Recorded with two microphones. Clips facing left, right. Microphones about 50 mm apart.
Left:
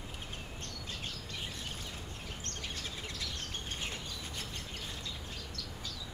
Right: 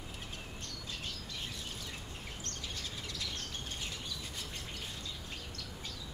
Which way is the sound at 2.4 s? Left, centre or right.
Left.